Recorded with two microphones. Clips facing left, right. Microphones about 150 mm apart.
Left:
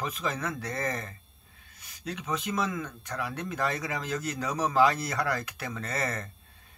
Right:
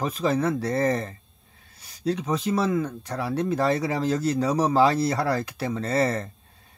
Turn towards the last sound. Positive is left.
turn(degrees=-30)  # may be behind; listen again after turning